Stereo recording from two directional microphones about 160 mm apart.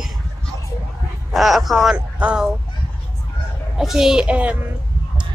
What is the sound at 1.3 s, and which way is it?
Speech, centre (ahead or behind).